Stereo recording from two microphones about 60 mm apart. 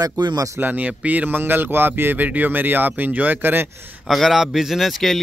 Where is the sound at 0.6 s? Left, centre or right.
Right.